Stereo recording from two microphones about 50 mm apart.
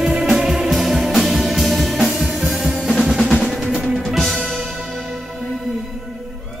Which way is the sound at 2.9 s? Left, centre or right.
Centre.